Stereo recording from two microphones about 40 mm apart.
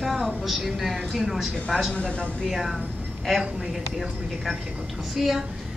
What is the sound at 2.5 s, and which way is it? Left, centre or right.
Speech, centre.